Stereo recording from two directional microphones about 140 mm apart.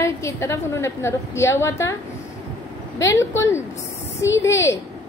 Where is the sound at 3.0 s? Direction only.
20° left (ahead or behind).